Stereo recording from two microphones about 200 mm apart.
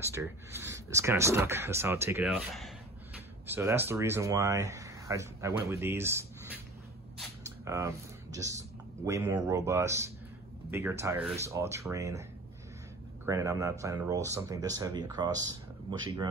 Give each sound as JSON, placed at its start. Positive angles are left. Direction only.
{"t": 0.0, "sound": "speech", "side_deg": -15}
{"t": 7.4, "sound": "a sound", "side_deg": -15}
{"t": 9.0, "sound": "speech", "side_deg": -15}